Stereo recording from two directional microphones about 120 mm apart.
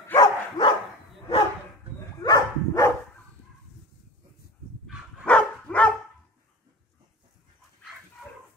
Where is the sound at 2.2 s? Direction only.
35° left (ahead or behind).